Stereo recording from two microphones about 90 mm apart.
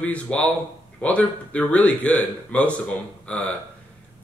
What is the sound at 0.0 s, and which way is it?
Speech, 15° left (ahead or behind).